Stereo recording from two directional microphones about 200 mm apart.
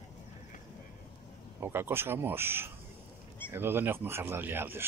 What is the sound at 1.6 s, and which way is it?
Speech, 10° right (ahead or behind).